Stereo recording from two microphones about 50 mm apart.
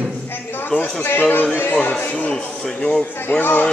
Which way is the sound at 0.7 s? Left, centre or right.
Left.